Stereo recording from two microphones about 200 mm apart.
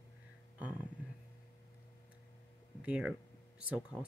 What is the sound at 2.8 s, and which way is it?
Speech, 5° right (ahead or behind).